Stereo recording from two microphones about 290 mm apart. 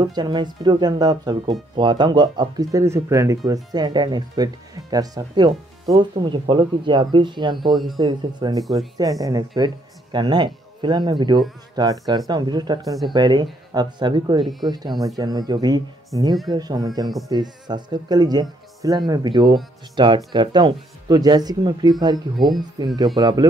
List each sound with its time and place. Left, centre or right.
0.0 s speech: centre